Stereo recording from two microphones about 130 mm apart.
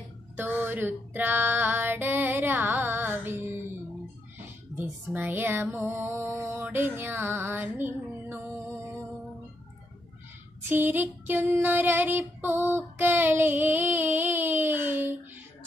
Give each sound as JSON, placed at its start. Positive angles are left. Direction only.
{"t": 0.4, "sound": "female singing", "side_deg": -15}
{"t": 4.7, "sound": "female singing", "side_deg": -15}
{"t": 10.7, "sound": "child singing", "side_deg": -15}